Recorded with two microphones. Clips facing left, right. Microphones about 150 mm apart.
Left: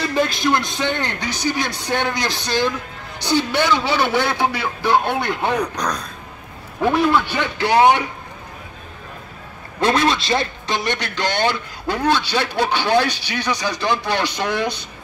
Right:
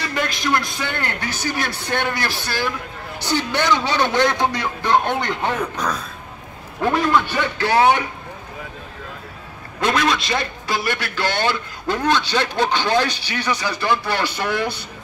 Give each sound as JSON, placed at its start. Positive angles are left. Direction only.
{"t": 0.1, "sound": "music", "side_deg": 30}
{"t": 0.7, "sound": "a man's voice", "side_deg": 20}
{"t": 5.6, "sound": "speech", "side_deg": -5}
{"t": 6.8, "sound": "a man's voice", "side_deg": 10}
{"t": 9.8, "sound": "a man's voice", "side_deg": 30}